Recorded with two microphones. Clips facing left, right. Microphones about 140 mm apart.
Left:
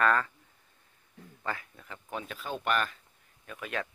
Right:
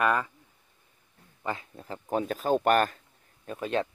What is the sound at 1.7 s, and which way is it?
Speech, 35° right (ahead or behind).